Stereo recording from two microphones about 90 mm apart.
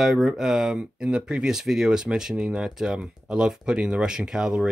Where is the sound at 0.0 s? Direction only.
5° right (ahead or behind).